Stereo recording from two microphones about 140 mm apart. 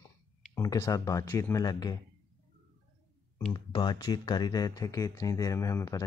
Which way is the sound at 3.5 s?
30° left (ahead or behind).